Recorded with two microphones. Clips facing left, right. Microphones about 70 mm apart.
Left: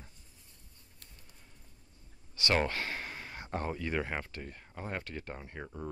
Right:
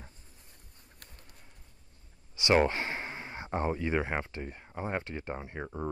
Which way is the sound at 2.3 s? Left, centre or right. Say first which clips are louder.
Right 5 dB; centre.